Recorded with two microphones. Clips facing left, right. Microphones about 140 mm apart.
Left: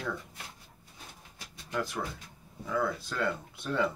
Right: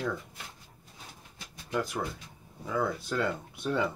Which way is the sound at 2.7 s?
15° right (ahead or behind).